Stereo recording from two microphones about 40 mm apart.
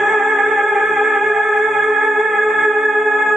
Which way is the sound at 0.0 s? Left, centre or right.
Centre.